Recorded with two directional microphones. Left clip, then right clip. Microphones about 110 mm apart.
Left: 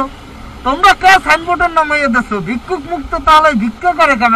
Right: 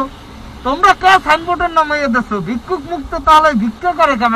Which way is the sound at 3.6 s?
35° left (ahead or behind).